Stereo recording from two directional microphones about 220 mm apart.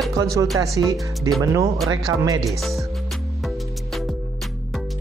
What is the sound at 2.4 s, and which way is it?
Speech, centre (ahead or behind).